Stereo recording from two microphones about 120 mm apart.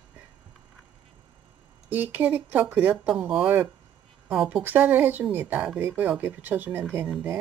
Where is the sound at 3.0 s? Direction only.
5° right (ahead or behind).